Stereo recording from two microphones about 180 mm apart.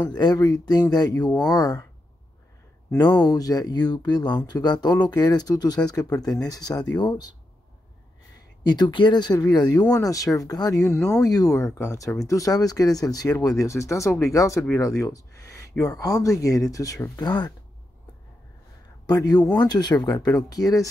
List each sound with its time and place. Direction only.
0.1 s speech: 20° left (ahead or behind)
3.0 s speech: 25° left (ahead or behind)
8.6 s speech: 25° left (ahead or behind)
19.0 s speech: 20° left (ahead or behind)